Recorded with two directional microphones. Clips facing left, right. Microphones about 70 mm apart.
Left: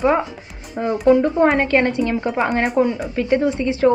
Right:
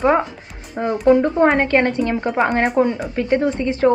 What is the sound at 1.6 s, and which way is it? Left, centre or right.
Speech, right.